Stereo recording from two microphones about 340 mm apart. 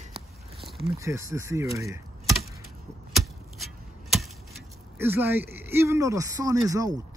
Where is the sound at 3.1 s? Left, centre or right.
Centre.